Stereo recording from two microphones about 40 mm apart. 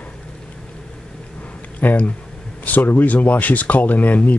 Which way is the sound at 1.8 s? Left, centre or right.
Left.